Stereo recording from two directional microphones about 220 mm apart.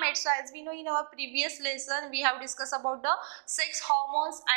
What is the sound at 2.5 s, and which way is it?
Speech, 25° right (ahead or behind).